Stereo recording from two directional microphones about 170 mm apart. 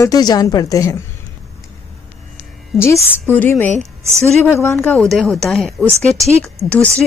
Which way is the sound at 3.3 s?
10° left (ahead or behind).